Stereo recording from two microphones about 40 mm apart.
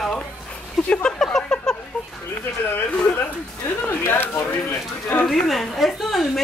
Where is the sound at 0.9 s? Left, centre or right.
Left.